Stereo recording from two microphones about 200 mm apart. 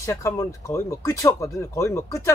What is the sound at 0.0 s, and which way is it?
A woman's voice, 15° left (ahead or behind).